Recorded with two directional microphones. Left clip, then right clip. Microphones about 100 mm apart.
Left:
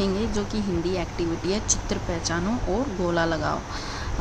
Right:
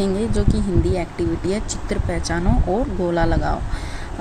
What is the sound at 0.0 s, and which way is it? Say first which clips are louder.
A woman's voice: right 4 dB; 35° right (ahead or behind).